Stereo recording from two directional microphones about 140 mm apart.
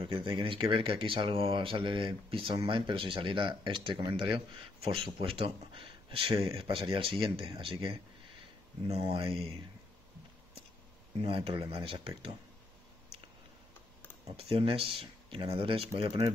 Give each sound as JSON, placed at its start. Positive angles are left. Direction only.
{"t": 0.0, "sound": "speech", "side_deg": -35}
{"t": 8.9, "sound": "speech", "side_deg": -40}
{"t": 11.1, "sound": "speech", "side_deg": -40}
{"t": 14.3, "sound": "speech", "side_deg": -40}
{"t": 15.9, "sound": "speech", "side_deg": -30}